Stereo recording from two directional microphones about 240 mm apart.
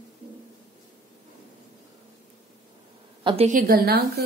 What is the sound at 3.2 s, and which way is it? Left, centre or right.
Speech, right.